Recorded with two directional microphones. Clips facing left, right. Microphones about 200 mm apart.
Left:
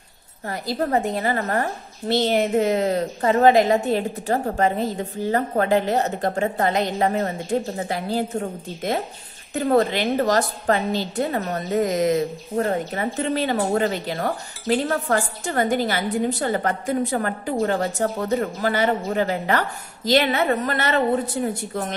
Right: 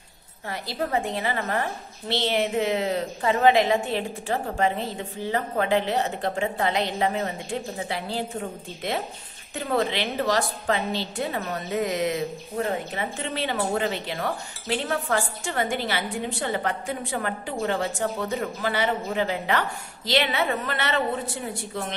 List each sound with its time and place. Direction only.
0.5 s a woman's voice: 40° left (ahead or behind)